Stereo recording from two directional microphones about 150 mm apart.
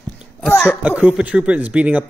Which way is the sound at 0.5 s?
15° left (ahead or behind).